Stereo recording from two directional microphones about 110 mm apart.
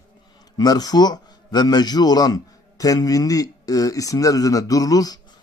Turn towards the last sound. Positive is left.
turn(degrees=35)  # may be behind; listen again after turning